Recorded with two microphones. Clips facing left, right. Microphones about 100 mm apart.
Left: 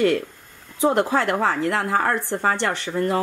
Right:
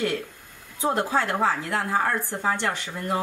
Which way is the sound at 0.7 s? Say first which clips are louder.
Left 5 dB; 65° left (ahead or behind).